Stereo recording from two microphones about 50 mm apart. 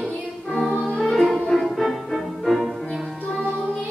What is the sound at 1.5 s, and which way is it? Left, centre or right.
Music, centre.